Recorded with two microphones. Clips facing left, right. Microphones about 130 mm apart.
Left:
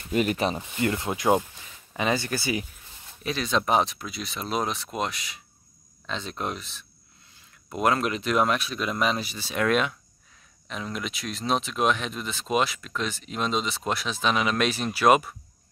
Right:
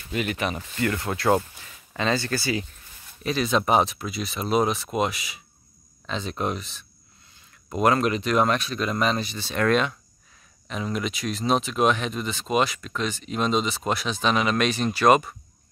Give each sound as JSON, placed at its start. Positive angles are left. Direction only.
{"t": 0.1, "sound": "speech", "side_deg": 40}
{"t": 0.6, "sound": "speech", "side_deg": 20}
{"t": 3.3, "sound": "speech", "side_deg": -5}